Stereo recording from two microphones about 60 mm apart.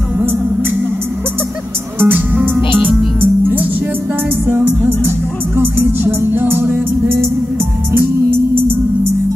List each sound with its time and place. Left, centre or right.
2.0 s music: right
8.3 s music: right